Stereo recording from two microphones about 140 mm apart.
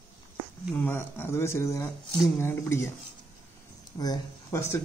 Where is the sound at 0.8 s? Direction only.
15° left (ahead or behind).